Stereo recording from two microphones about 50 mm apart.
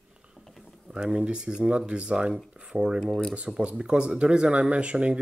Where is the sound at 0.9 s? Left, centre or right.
Right.